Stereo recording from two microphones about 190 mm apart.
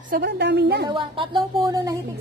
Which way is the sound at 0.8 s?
25° right (ahead or behind).